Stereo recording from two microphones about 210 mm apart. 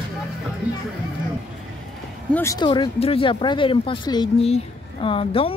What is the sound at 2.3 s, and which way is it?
Speech, 15° left (ahead or behind).